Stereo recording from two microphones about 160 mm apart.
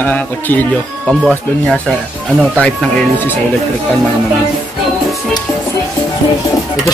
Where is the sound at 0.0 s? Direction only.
10° left (ahead or behind).